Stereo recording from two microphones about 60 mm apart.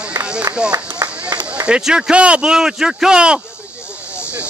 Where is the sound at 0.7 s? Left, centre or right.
Right.